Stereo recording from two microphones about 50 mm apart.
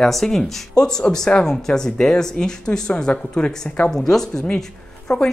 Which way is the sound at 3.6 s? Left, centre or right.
Left.